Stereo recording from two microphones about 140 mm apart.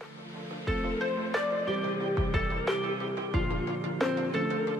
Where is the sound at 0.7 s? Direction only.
Centre (ahead or behind).